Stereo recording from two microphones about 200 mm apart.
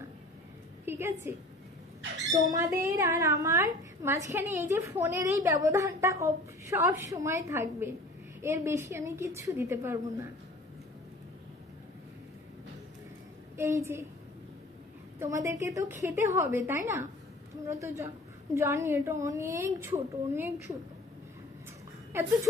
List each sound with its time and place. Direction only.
0.8 s a woman's voice: 10° right (ahead or behind)
13.6 s a woman's voice: 15° right (ahead or behind)
15.1 s a woman's voice: 15° right (ahead or behind)
22.1 s a woman's voice: 10° right (ahead or behind)